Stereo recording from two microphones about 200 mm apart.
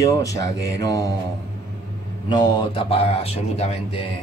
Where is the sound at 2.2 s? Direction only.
20° left (ahead or behind).